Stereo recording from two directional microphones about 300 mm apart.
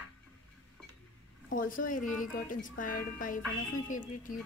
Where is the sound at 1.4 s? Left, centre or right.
Left.